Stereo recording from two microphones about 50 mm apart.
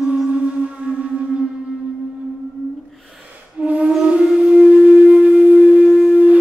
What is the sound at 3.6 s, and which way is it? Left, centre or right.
Music, right.